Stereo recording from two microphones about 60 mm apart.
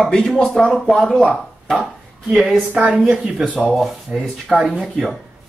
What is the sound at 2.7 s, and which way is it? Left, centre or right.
Speech, right.